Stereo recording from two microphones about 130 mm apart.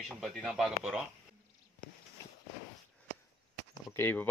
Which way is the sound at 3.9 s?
15° left (ahead or behind).